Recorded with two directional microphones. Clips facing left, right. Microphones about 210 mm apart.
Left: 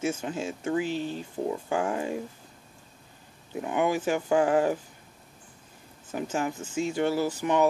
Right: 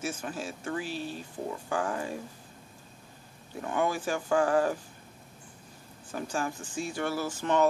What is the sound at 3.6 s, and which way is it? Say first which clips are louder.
Speech: left 3 dB; 15° left (ahead or behind).